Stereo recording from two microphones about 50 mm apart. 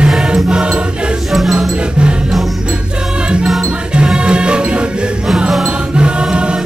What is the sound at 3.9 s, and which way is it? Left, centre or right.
Music, centre.